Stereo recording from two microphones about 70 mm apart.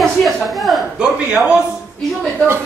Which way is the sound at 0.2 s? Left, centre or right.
Centre.